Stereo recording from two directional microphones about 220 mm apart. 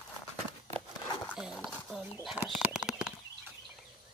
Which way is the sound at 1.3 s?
5° right (ahead or behind).